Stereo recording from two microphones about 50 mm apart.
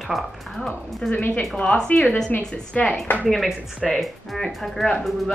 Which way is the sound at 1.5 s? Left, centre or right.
Centre.